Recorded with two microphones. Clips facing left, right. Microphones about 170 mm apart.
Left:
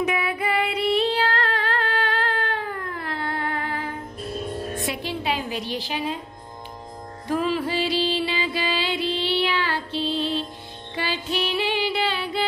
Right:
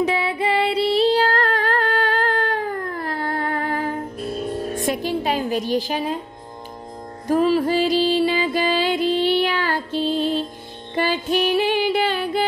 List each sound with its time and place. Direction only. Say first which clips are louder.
0.0 s female singing: right 4 dB; 30° right (ahead or behind)
4.7 s music: right 6 dB; 45° right (ahead or behind)
7.2 s music: right 6 dB; 40° right (ahead or behind)